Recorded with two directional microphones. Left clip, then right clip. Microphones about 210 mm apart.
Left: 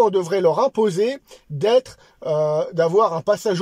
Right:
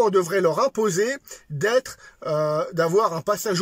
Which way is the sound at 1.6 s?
35° left (ahead or behind).